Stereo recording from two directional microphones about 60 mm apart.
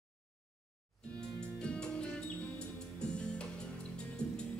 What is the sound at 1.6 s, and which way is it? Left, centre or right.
Music, centre.